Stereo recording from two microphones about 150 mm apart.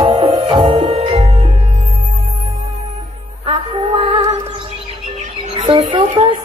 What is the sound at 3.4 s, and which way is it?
Music, 40° right (ahead or behind).